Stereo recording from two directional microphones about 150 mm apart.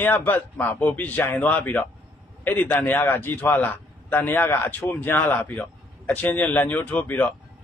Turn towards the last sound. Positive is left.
turn(degrees=10)  # may be behind; listen again after turning